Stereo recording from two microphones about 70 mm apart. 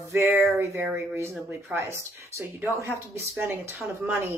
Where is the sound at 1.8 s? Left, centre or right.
Right.